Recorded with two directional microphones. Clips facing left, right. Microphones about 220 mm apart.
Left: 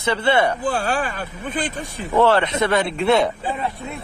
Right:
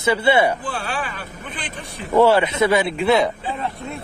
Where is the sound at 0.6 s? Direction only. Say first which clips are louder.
Left 5 dB; 45° left (ahead or behind).